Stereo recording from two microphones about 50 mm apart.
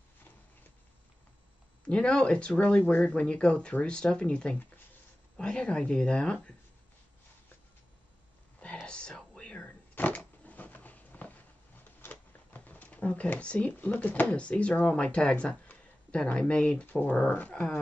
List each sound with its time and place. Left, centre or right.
1.9 s speech: centre
2.6 s speech: left
8.8 s whispering: centre
9.4 s a sound: left
12.0 s shuffling cards: left
12.5 s a sound: left
13.7 s speech: left
16.8 s speech: left